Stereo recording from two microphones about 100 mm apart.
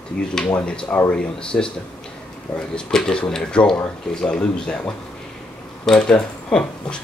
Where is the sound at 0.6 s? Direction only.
10° left (ahead or behind).